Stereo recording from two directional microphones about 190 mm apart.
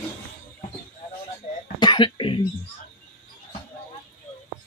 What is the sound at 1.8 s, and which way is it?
Cough, 25° left (ahead or behind).